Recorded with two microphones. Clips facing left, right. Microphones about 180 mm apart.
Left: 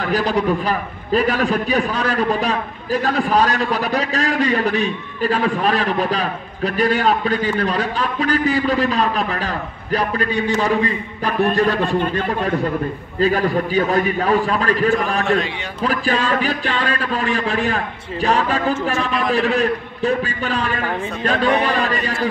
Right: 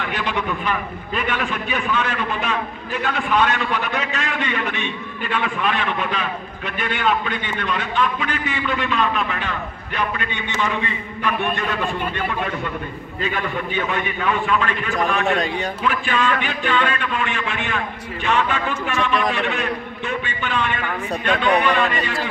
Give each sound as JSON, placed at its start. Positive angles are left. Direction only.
{"t": 0.0, "sound": "a man's voice", "side_deg": 35}